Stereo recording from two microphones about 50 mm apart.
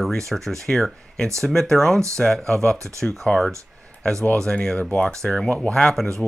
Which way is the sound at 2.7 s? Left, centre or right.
Right.